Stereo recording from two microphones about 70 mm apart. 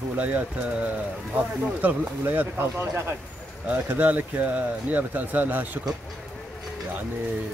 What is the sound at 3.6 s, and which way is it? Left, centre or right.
Speech, right.